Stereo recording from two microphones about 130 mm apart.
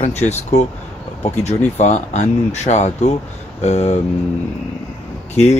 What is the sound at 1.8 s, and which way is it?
Speech, 65° left (ahead or behind).